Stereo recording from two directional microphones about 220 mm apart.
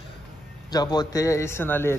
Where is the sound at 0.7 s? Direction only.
20° left (ahead or behind).